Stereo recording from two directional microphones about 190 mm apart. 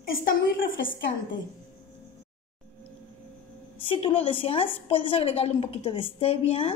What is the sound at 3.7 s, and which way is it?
A woman's voice, 25° left (ahead or behind).